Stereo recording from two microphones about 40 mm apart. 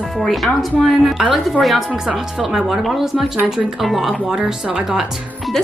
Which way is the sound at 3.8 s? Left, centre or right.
Centre.